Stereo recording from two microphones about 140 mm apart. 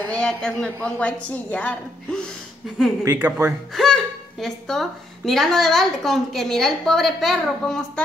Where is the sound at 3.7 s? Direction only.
5° left (ahead or behind).